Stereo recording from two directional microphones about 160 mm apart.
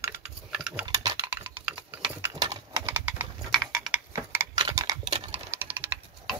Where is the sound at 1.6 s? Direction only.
5° right (ahead or behind).